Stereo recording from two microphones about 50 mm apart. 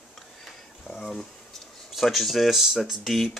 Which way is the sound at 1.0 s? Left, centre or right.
Centre.